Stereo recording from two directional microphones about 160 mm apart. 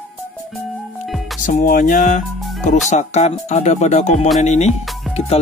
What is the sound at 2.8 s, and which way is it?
Speech, 45° left (ahead or behind).